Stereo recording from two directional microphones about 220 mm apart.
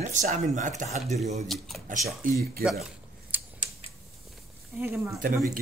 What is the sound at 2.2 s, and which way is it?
Speech, 35° right (ahead or behind).